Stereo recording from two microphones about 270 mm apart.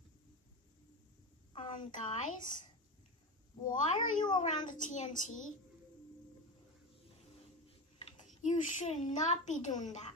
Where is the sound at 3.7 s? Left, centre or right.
Centre.